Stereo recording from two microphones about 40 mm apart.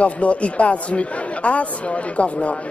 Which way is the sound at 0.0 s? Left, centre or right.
Left.